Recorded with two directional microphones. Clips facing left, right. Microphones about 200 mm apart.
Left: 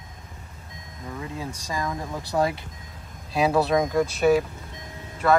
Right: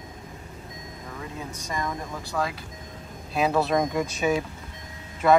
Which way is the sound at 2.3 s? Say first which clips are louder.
Left 5 dB; 25° left (ahead or behind).